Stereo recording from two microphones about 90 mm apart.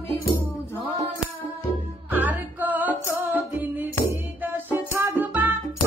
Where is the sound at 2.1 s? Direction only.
20° right (ahead or behind).